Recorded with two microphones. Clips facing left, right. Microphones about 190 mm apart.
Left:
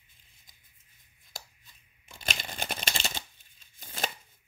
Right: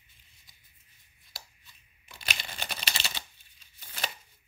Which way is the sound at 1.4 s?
45° left (ahead or behind).